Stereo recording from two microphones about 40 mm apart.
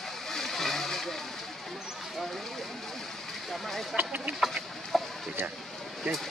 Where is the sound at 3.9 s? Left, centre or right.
Right.